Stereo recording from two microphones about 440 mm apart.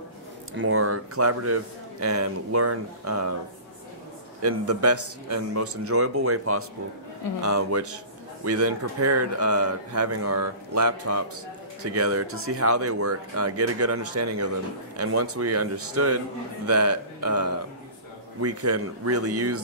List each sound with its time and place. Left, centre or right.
0.6 s a man's voice: right
4.4 s a man's voice: right